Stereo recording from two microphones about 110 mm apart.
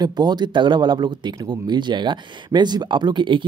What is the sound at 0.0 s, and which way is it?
Speech, 40° right (ahead or behind).